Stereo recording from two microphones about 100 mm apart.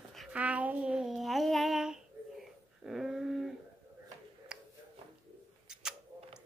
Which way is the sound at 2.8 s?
5° right (ahead or behind).